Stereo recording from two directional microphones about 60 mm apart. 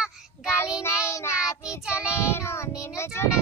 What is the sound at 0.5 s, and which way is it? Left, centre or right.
Child singing, left.